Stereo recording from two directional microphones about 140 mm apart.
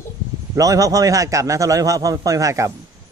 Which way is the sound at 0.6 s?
25° right (ahead or behind).